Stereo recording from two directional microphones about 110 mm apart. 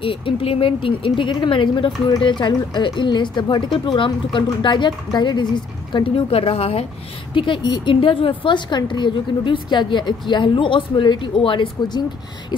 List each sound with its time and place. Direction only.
0.0 s speech: 50° left (ahead or behind)
5.9 s a woman's voice: 55° left (ahead or behind)
7.3 s speech: 50° left (ahead or behind)